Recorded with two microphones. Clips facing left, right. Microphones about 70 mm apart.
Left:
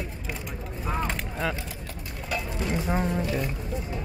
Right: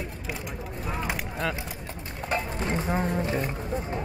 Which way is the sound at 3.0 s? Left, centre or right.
Right.